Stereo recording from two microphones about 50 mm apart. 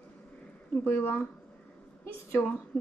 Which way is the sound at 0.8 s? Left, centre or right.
Left.